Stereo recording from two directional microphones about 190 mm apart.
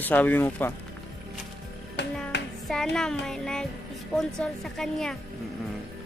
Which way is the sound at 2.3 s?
65° left (ahead or behind).